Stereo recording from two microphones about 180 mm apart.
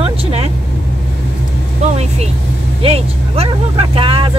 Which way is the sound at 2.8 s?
35° right (ahead or behind).